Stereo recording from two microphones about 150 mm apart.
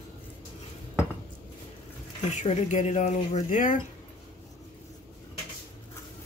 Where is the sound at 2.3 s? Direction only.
55° left (ahead or behind).